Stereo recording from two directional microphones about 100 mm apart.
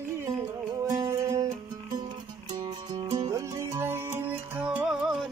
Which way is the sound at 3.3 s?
35° right (ahead or behind).